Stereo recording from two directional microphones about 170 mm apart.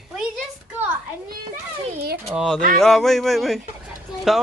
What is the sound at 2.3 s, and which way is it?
Speech, 5° right (ahead or behind).